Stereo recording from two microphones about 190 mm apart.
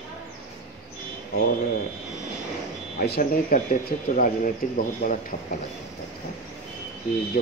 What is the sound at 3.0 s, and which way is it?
Speech, 50° left (ahead or behind).